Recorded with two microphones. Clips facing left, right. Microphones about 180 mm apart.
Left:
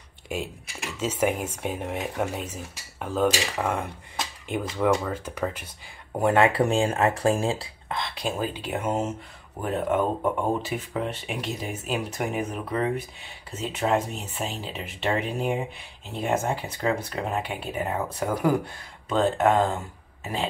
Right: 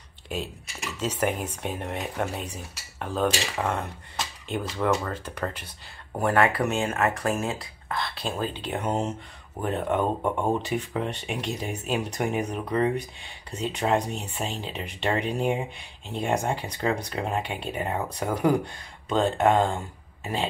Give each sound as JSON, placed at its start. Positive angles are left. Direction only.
{"t": 0.3, "sound": "speech", "side_deg": 10}
{"t": 6.1, "sound": "speech", "side_deg": 20}
{"t": 17.8, "sound": "speech", "side_deg": -10}
{"t": 19.0, "sound": "speech", "side_deg": 5}